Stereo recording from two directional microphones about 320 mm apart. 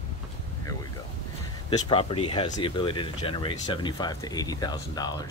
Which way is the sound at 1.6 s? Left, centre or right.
Centre.